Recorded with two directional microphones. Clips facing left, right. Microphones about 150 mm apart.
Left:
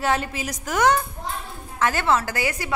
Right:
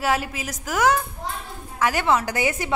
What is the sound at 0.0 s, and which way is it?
A woman's voice, 5° right (ahead or behind).